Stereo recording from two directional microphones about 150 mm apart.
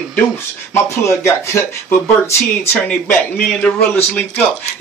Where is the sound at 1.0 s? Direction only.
15° left (ahead or behind).